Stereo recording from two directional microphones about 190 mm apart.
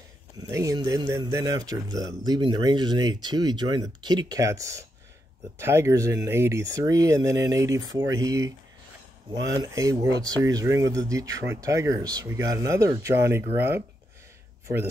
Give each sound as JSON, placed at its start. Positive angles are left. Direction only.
{"t": 0.4, "sound": "speech", "side_deg": -15}
{"t": 9.6, "sound": "speech", "side_deg": -20}